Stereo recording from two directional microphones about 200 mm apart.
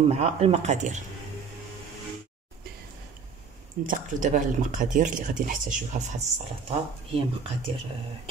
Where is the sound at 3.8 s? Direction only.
40° right (ahead or behind).